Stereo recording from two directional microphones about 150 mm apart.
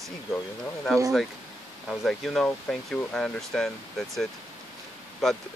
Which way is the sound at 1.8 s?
Centre (ahead or behind).